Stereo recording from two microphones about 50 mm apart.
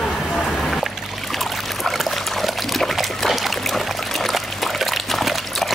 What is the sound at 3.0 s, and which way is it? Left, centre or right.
Trickle, centre.